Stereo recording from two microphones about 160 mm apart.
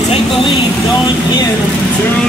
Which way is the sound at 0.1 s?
30° left (ahead or behind).